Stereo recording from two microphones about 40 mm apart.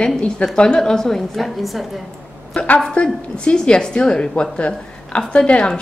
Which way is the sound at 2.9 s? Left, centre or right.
Left.